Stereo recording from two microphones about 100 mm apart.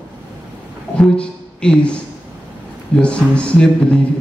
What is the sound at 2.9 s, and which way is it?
Speech, 10° left (ahead or behind).